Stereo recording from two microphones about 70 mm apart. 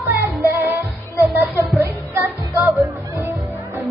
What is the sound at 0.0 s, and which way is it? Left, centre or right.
Music, right.